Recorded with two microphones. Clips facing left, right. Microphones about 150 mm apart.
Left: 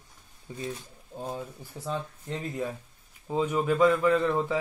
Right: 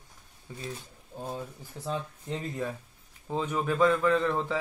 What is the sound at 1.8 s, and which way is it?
A man's voice, centre (ahead or behind).